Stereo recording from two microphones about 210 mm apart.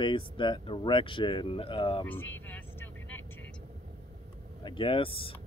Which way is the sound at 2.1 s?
10° left (ahead or behind).